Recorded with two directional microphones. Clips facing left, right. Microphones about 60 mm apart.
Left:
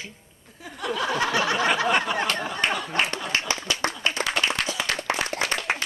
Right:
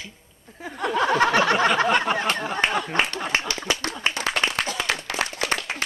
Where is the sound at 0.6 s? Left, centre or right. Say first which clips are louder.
Right 5 dB; right.